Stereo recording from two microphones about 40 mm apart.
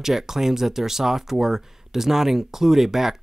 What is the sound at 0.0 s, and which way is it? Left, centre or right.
Speech, centre.